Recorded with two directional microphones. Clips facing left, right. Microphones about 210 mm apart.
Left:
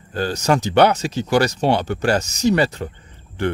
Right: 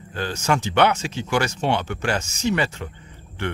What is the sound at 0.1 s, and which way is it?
Speech, 40° left (ahead or behind).